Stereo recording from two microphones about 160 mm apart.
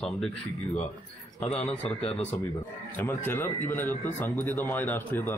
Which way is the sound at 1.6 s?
40° left (ahead or behind).